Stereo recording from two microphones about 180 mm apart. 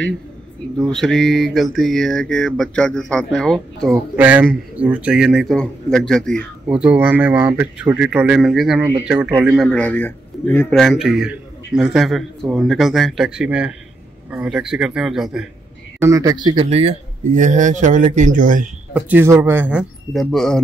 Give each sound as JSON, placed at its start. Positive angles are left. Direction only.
{"t": 0.7, "sound": "a sound", "side_deg": 0}
{"t": 4.2, "sound": "speech", "side_deg": -10}
{"t": 4.7, "sound": "a sound", "side_deg": -10}
{"t": 6.8, "sound": "speech", "side_deg": -10}
{"t": 9.7, "sound": "a man's voice", "side_deg": 5}
{"t": 10.8, "sound": "a sound", "side_deg": 0}
{"t": 16.0, "sound": "speech", "side_deg": -20}
{"t": 16.6, "sound": "speech", "side_deg": -35}
{"t": 18.9, "sound": "speech", "side_deg": -10}